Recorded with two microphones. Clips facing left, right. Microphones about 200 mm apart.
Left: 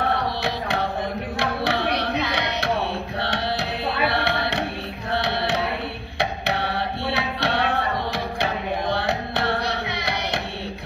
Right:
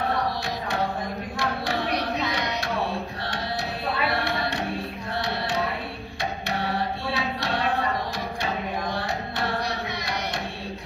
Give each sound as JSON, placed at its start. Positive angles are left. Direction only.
{"t": 1.4, "sound": "carnatic music", "side_deg": 65}
{"t": 4.1, "sound": "music", "side_deg": 65}
{"t": 8.9, "sound": "carnatic music", "side_deg": 65}